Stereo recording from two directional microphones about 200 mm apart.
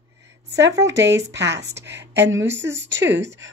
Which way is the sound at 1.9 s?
60° right (ahead or behind).